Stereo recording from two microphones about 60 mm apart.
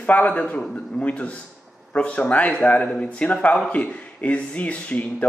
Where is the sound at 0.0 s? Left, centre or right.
Left.